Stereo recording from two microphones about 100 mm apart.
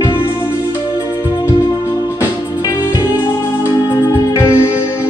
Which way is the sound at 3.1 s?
25° left (ahead or behind).